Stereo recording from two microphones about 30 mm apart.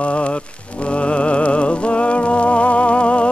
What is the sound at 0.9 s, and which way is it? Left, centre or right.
Music, left.